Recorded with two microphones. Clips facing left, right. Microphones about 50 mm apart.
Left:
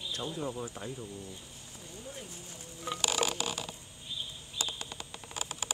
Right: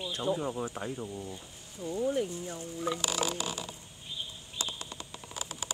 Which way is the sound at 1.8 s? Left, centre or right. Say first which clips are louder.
Right 17 dB; right.